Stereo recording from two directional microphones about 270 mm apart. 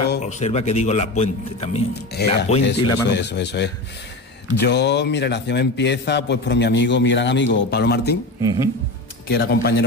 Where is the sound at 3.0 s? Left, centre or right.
Left.